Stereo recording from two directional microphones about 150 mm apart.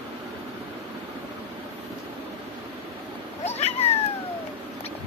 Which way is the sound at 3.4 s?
45° left (ahead or behind).